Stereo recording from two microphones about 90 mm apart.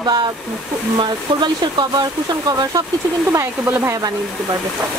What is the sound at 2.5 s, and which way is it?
Speech, 45° right (ahead or behind).